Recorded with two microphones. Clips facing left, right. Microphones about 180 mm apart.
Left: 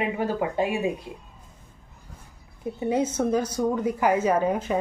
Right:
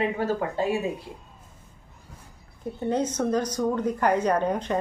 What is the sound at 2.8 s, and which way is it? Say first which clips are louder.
A woman's voice: left 1 dB; 10° left (ahead or behind).